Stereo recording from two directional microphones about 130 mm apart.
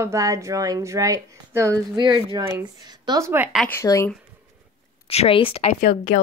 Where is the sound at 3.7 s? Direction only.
20° left (ahead or behind).